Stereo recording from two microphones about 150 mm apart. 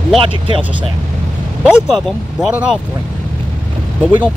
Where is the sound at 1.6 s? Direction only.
5° right (ahead or behind).